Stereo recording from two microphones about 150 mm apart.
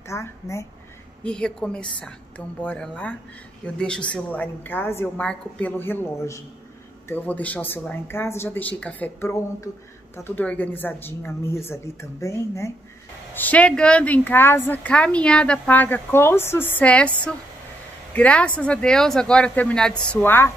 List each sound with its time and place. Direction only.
0.0 s a woman's voice: 20° left (ahead or behind)
1.2 s a woman's voice: 5° left (ahead or behind)